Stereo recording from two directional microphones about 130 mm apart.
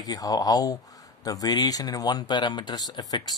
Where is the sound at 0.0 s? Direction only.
30° left (ahead or behind).